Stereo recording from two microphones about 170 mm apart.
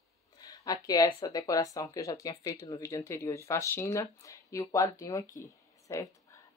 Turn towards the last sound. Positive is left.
turn(degrees=20)  # may be behind; listen again after turning